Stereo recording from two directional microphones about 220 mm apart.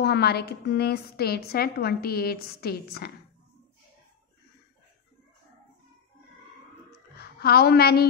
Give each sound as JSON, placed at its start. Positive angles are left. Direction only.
{"t": 0.0, "sound": "a woman's voice", "side_deg": 45}
{"t": 7.2, "sound": "a woman's voice", "side_deg": 45}